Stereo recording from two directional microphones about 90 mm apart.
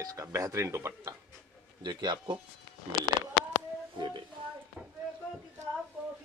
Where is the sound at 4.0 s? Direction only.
60° right (ahead or behind).